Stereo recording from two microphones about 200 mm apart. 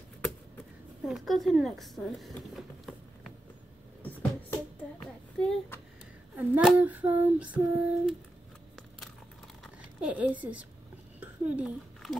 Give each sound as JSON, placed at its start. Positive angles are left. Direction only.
{"t": 1.0, "sound": "speech", "side_deg": 0}
{"t": 4.0, "sound": "music", "side_deg": 5}
{"t": 6.3, "sound": "child singing", "side_deg": -5}
{"t": 9.6, "sound": "a sound", "side_deg": -5}